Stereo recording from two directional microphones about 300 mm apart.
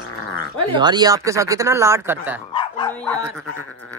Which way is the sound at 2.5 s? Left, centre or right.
Centre.